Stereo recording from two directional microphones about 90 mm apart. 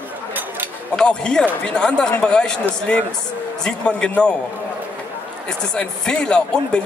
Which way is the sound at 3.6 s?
10° left (ahead or behind).